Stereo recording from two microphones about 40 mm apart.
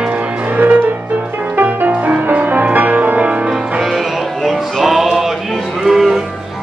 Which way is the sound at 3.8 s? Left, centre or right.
Centre.